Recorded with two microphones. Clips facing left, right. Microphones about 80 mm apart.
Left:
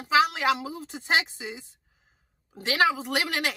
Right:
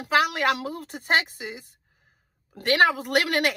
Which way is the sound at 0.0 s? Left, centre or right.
Right.